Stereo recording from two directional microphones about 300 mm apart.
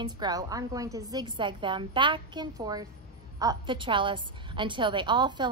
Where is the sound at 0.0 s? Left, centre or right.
Centre.